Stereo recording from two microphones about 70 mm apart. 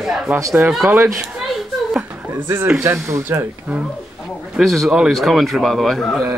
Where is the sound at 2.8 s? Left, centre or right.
Right.